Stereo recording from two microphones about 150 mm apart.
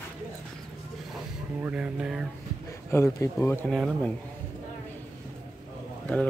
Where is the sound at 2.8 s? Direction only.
20° left (ahead or behind).